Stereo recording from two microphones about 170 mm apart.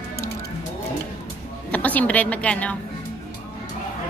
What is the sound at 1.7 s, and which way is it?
A woman's voice, 10° left (ahead or behind).